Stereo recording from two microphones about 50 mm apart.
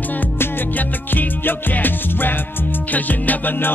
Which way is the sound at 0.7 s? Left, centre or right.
Left.